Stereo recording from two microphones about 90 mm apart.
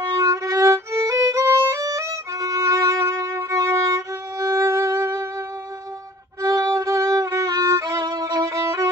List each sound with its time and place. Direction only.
0.2 s violin: 40° right (ahead or behind)
6.4 s violin: 40° right (ahead or behind)